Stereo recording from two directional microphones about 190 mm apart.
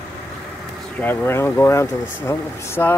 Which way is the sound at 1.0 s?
10° left (ahead or behind).